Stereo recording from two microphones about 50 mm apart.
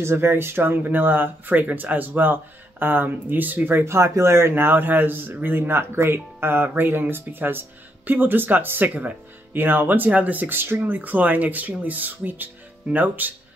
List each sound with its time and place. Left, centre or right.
0.0 s speech: right
3.8 s a man's voice: right
11.0 s speech: right